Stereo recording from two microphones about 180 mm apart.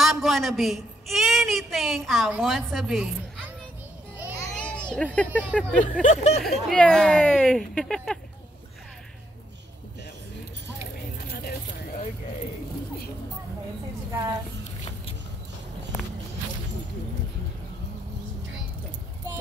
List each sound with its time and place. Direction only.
0.0 s a sound: centre (ahead or behind)
2.3 s a woman's voice: centre (ahead or behind)
4.4 s children playing: 5° left (ahead or behind)
5.5 s speech: 5° left (ahead or behind)
6.0 s speech: 40° left (ahead or behind)
6.4 s speech: 5° left (ahead or behind)